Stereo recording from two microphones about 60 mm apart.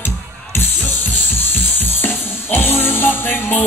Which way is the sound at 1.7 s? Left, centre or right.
Left.